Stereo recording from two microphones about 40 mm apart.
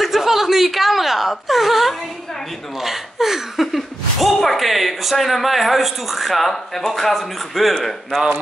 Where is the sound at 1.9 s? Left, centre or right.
Centre.